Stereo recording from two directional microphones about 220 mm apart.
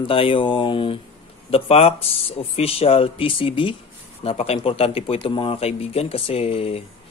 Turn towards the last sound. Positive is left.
turn(degrees=25)  # may be behind; listen again after turning